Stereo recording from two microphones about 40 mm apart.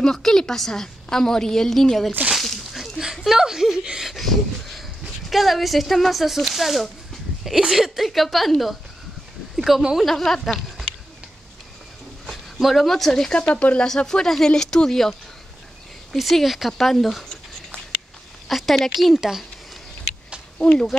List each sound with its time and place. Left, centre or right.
0.0 s a woman's voice: centre
2.3 s a sound: centre
3.0 s speech: centre
4.1 s a sound: centre
5.0 s speech: centre
9.6 s a sound: centre
10.0 s a woman's voice: centre
12.3 s a sound: centre
13.1 s a woman's voice: centre
16.4 s speech: centre
16.7 s speech: centre
18.5 s speech: centre
19.1 s speech: centre
20.5 s speech: left